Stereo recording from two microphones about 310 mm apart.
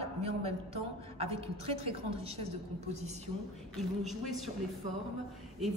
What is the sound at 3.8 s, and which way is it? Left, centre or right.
Speech, centre.